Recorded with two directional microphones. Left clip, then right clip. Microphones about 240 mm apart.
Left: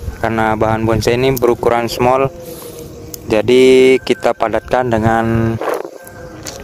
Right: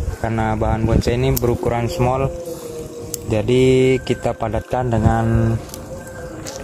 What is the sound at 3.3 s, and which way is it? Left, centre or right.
Speech, left.